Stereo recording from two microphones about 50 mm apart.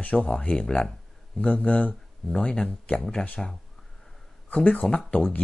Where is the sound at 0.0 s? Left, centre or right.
Left.